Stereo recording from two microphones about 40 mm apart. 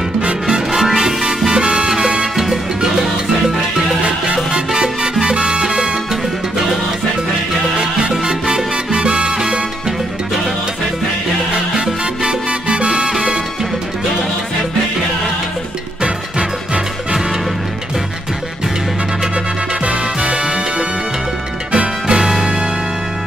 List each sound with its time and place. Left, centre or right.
0.2 s music: right
0.7 s music: centre
4.5 s music: centre
5.2 s salsa music: centre
8.1 s salsa music: centre
11.8 s music: right
16.0 s music: centre
19.8 s music: right
20.3 s music: centre
21.7 s music: centre